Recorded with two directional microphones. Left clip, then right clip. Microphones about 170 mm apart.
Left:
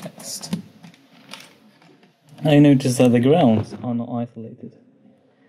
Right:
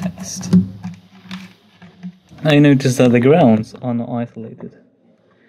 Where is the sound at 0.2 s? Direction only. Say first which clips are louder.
Right 8 dB; 50° right (ahead or behind).